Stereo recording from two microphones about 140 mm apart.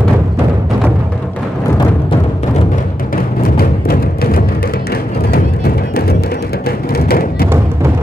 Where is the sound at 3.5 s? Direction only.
90° left.